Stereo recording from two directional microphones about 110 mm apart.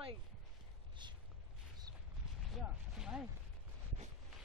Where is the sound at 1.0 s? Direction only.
45° right (ahead or behind).